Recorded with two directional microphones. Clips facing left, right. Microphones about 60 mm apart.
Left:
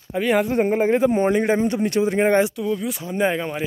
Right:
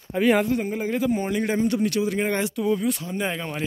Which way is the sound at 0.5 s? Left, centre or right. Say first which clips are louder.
Left 7 dB; left.